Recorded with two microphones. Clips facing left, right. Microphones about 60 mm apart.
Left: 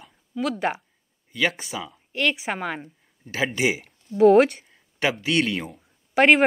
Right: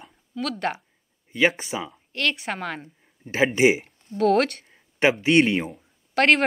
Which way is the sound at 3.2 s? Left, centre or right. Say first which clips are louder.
Right 5 dB; right.